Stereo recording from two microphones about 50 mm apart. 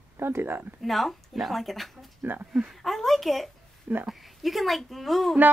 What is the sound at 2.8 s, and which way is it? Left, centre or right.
Speech, centre.